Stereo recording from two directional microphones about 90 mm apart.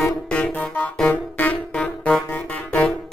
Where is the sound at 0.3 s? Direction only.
15° left (ahead or behind).